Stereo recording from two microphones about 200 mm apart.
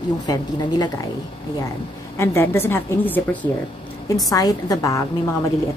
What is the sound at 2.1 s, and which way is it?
A woman's voice, 15° left (ahead or behind).